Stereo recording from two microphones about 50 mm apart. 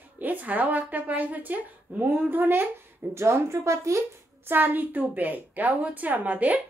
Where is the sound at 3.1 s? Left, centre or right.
Right.